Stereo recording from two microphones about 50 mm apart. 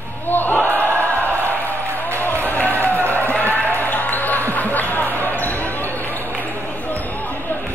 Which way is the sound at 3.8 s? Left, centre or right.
Left.